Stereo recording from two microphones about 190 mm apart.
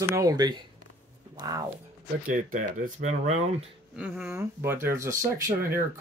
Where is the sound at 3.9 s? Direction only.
5° right (ahead or behind).